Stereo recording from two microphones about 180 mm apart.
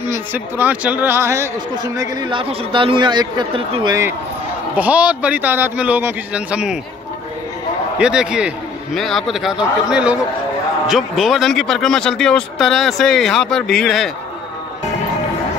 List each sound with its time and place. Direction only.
0.0 s a man's voice: 15° right (ahead or behind)
2.0 s speech: 25° right (ahead or behind)
4.7 s a man's voice: 10° right (ahead or behind)
8.0 s speech: 5° right (ahead or behind)